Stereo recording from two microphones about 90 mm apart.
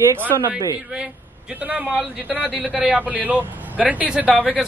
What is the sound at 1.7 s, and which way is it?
A man's voice, 10° right (ahead or behind).